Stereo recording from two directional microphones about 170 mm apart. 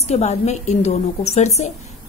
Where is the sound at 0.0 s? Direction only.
40° left (ahead or behind).